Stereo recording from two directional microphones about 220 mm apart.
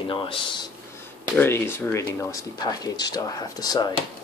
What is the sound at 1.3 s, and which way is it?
Speech, 10° left (ahead or behind).